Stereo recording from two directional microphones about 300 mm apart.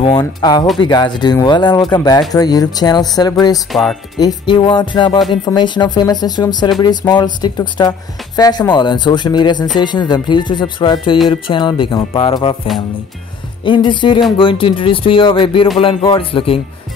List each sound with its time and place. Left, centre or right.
0.0 s speech: centre
13.7 s speech: centre